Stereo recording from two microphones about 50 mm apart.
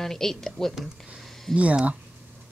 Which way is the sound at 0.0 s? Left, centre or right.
Centre.